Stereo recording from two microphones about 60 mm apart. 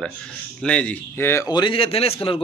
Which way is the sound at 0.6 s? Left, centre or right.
Centre.